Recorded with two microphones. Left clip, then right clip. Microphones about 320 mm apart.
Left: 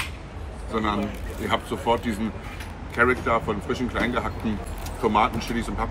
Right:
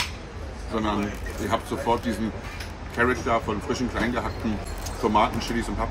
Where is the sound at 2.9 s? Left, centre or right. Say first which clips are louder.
Left 2 dB; centre.